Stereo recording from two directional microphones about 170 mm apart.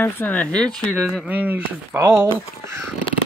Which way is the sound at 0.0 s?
10° left (ahead or behind).